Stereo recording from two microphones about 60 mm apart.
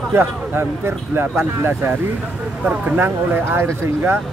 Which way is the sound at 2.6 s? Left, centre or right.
Right.